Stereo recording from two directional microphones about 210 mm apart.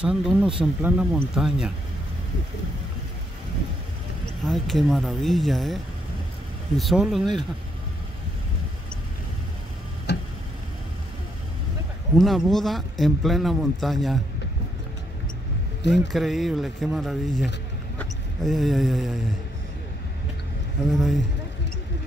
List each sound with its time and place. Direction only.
0.0 s speech: 5° right (ahead or behind)
4.5 s speech: centre (ahead or behind)
6.8 s speech: centre (ahead or behind)
10.1 s tick-tock: 50° left (ahead or behind)
12.2 s speech: centre (ahead or behind)
15.9 s speech: centre (ahead or behind)
20.9 s speech: centre (ahead or behind)